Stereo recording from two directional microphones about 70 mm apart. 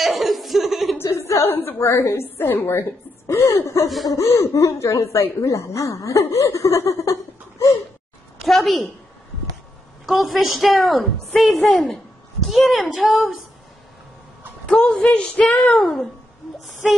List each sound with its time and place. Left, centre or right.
0.0 s chuckle: centre
1.0 s a sound: left
1.5 s speech: left
8.5 s a woman's voice: centre
10.0 s a woman's voice: centre
11.3 s a woman's voice: centre
12.4 s a woman's voice: centre
14.7 s speech: centre
16.8 s a woman's voice: centre